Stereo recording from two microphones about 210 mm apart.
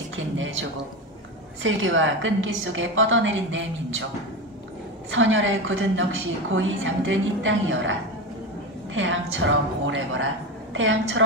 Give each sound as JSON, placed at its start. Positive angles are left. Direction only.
{"t": 0.1, "sound": "a woman's voice", "side_deg": -65}
{"t": 5.1, "sound": "a woman's voice", "side_deg": -65}
{"t": 8.9, "sound": "a woman's voice", "side_deg": -65}